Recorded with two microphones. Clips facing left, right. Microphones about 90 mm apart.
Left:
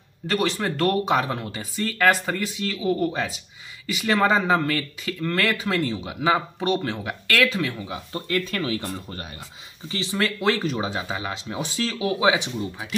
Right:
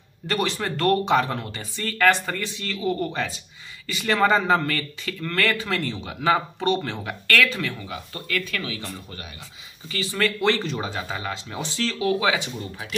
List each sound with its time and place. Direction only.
0.3 s speech: centre (ahead or behind); by 8.2 s 20° left (ahead or behind)
8.3 s speech: 35° left (ahead or behind)
10.1 s speech: 10° left (ahead or behind)